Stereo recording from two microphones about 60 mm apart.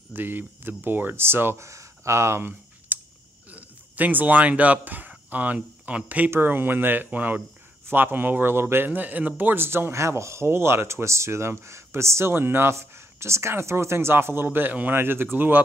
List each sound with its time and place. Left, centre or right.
0.1 s speech: right
2.9 s clicking: right
3.4 s speech: right
6.3 s a man's voice: right